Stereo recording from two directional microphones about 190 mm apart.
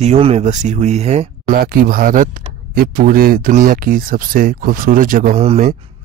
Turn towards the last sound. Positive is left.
turn(degrees=-35)  # may be behind; listen again after turning